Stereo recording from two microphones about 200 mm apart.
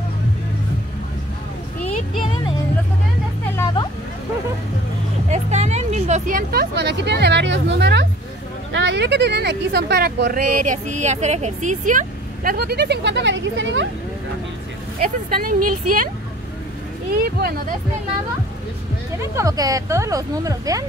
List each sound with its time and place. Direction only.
5.3 s speech: 35° right (ahead or behind); by 13.8 s 70° right (ahead or behind)
15.0 s a woman's voice: 45° right (ahead or behind)
17.1 s a woman's voice: 50° right (ahead or behind)
19.3 s speech: 15° right (ahead or behind)